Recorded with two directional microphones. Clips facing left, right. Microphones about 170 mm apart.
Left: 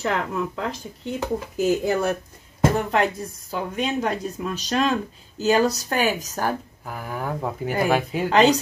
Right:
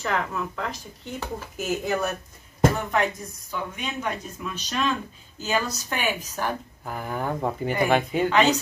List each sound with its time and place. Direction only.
0.0 s speech: 30° left (ahead or behind)
6.8 s speech: centre (ahead or behind)
8.3 s speech: 35° left (ahead or behind)